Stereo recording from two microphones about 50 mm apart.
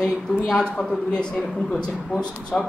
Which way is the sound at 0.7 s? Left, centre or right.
Centre.